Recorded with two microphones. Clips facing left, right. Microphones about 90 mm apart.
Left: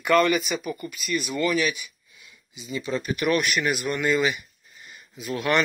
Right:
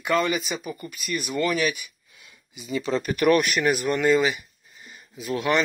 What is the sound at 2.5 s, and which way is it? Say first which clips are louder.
Speech: right 3 dB; 60° right (ahead or behind).